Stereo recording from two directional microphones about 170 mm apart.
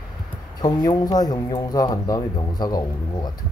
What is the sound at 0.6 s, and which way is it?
A man's voice, 25° left (ahead or behind).